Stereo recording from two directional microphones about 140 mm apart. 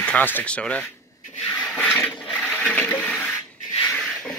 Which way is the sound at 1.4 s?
10° left (ahead or behind).